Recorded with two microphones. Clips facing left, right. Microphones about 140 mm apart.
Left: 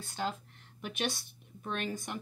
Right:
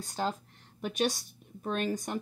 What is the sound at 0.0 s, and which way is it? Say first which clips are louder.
Speech: right 3 dB; 40° right (ahead or behind).